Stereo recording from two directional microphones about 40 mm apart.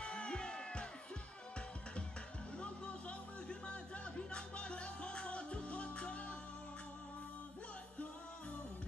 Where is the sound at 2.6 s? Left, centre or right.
Left.